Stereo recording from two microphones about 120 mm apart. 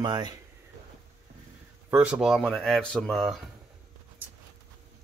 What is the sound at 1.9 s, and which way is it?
Speech, 10° right (ahead or behind).